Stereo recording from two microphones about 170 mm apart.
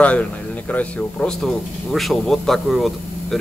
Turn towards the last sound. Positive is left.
turn(degrees=0)  # may be behind; listen again after turning